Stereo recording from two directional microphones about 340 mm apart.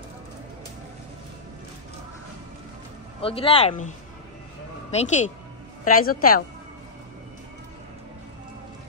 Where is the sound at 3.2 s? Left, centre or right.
Centre.